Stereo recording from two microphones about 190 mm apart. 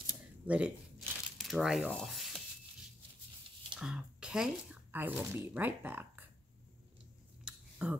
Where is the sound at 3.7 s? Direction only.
5° right (ahead or behind).